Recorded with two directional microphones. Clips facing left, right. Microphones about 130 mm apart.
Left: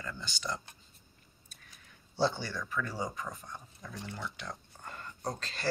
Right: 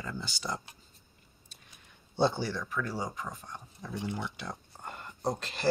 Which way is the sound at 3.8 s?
15° right (ahead or behind).